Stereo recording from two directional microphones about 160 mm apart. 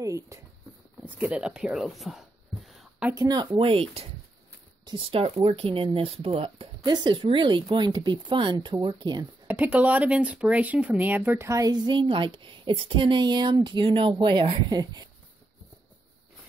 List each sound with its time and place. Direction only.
0.0 s speech: 20° right (ahead or behind)
1.0 s a sound: 10° right (ahead or behind)
3.2 s speech: 25° right (ahead or behind)
6.8 s speech: 25° right (ahead or behind)
9.5 s speech: 10° right (ahead or behind); by 15.0 s 25° right (ahead or behind)